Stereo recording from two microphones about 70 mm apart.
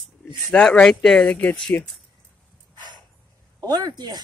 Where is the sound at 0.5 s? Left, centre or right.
Centre.